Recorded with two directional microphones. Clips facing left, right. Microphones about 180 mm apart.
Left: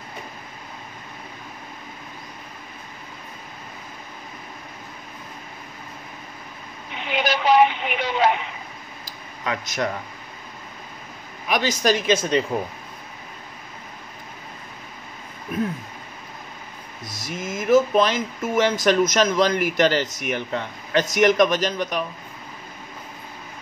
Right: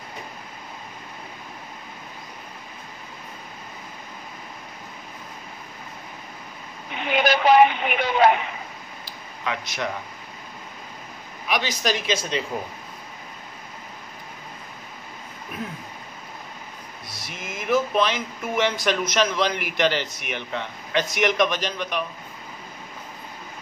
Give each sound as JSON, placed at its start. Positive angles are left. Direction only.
{"t": 7.1, "sound": "a woman's voice", "side_deg": -55}
{"t": 9.0, "sound": "a sound", "side_deg": 45}
{"t": 11.4, "sound": "speech", "side_deg": 45}
{"t": 17.1, "sound": "speech", "side_deg": 45}